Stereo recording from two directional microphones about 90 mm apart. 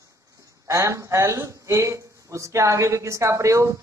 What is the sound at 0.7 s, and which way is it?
Speech, 35° right (ahead or behind).